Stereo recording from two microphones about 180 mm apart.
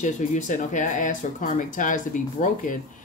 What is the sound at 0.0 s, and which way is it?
Speech, 45° left (ahead or behind).